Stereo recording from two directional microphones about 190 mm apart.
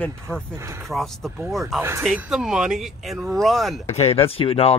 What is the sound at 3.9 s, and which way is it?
Speech, 35° left (ahead or behind).